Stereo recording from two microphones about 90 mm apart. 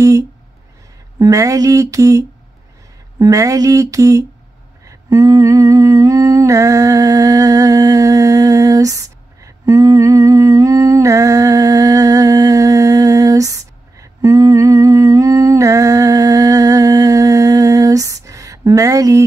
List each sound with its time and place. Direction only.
1.2 s speech: 40° right (ahead or behind)
4.8 s humming: 40° right (ahead or behind)